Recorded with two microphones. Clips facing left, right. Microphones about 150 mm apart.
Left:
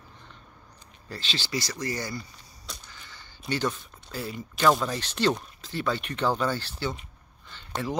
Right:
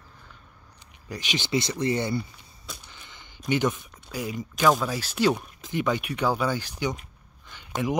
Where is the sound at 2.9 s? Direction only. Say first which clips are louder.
Even; 20° right (ahead or behind).